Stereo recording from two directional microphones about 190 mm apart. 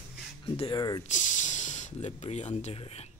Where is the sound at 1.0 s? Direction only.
40° left (ahead or behind).